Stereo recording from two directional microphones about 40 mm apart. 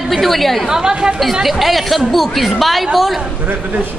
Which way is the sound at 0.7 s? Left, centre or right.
Centre.